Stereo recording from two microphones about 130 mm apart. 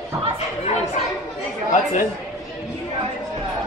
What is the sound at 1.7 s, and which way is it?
Speech, 70° left (ahead or behind).